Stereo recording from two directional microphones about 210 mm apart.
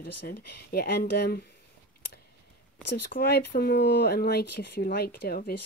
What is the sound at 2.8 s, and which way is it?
Speech, 50° left (ahead or behind).